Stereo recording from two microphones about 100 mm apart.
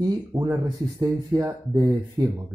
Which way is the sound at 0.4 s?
45° right (ahead or behind).